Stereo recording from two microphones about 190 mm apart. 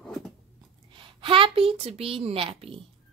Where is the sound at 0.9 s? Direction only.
25° right (ahead or behind).